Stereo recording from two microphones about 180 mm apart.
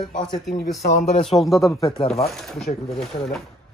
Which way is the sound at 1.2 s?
Centre (ahead or behind).